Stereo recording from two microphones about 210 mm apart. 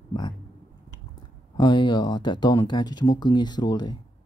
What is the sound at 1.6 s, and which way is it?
Speech, 20° left (ahead or behind).